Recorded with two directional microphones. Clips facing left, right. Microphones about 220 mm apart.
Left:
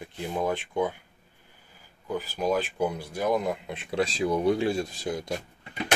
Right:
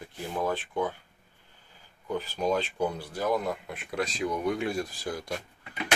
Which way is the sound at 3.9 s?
30° left (ahead or behind).